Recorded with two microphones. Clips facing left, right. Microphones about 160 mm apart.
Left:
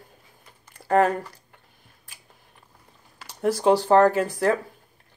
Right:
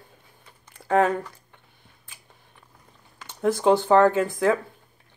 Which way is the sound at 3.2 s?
35° left (ahead or behind).